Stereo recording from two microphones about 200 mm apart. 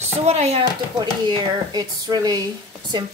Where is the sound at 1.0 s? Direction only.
20° right (ahead or behind).